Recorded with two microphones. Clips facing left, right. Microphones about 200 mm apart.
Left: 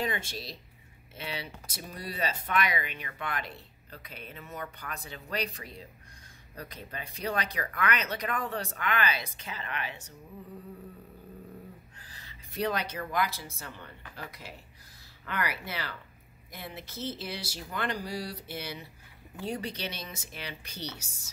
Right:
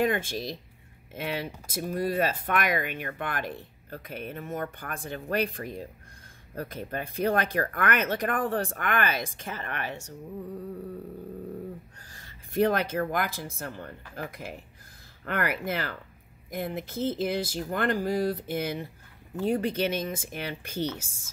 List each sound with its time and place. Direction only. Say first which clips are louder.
0.0 s speech: right 7 dB; 50° right (ahead or behind)
12.1 s speech: right 10 dB; 50° right (ahead or behind)